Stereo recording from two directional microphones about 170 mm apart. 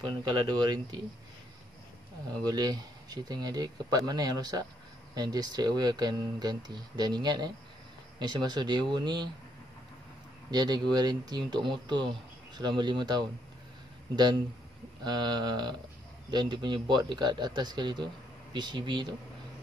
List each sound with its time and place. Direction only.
0.3 s a man's voice: 25° right (ahead or behind)
2.4 s a man's voice: 25° right (ahead or behind)
10.5 s a man's voice: 25° right (ahead or behind)
15.0 s a man's voice: 25° right (ahead or behind)